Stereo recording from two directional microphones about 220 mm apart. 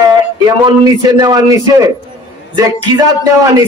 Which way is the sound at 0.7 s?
15° right (ahead or behind).